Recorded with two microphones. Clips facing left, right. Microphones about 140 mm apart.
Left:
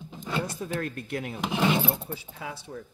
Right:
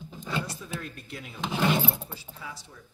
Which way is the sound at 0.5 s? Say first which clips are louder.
Left 7 dB; 55° left (ahead or behind).